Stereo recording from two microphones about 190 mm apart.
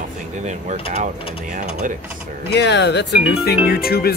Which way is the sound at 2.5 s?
65° left (ahead or behind).